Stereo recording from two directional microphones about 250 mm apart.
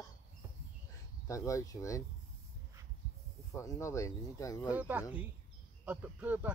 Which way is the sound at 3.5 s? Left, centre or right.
Centre.